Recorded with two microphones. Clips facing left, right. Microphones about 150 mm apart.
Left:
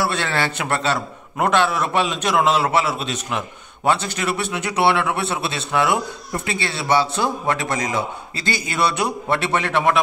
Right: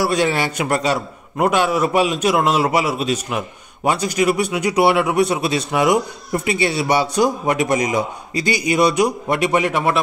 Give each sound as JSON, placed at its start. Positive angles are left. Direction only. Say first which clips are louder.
{"t": 0.1, "sound": "a man's voice", "louder": "right 5 dB", "side_deg": -15}